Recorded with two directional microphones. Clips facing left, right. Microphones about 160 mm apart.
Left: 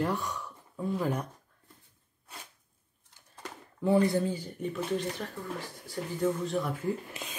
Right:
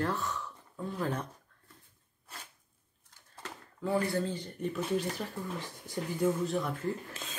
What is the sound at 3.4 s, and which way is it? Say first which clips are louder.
Speech: left 2 dB; 20° left (ahead or behind).